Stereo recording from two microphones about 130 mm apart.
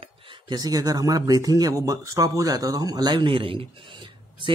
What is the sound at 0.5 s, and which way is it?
Speech, 30° right (ahead or behind).